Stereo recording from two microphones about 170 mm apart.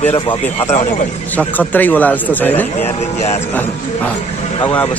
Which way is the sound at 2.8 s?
40° left (ahead or behind).